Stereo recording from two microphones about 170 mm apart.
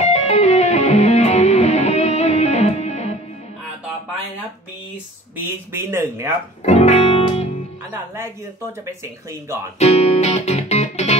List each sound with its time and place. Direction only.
0.0 s music: 40° left (ahead or behind)
5.5 s speech: 15° right (ahead or behind)
6.6 s music: 40° left (ahead or behind)
9.8 s music: 40° left (ahead or behind)